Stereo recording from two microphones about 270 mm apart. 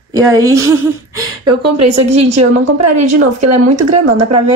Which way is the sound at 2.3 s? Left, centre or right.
Right.